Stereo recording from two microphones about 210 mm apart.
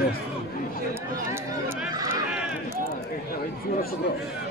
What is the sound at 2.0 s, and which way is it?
Run, 15° right (ahead or behind).